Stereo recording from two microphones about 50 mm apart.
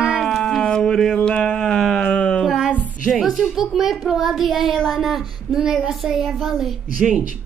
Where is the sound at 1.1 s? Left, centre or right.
Centre.